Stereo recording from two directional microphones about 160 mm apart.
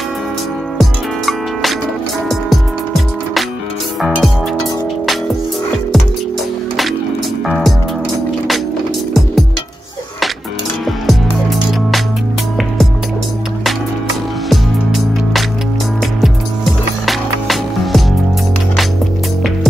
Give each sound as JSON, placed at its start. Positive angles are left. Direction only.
{"t": 0.7, "sound": "music", "side_deg": 0}
{"t": 4.0, "sound": "music", "side_deg": 0}
{"t": 7.4, "sound": "music", "side_deg": 0}
{"t": 16.2, "sound": "music", "side_deg": 0}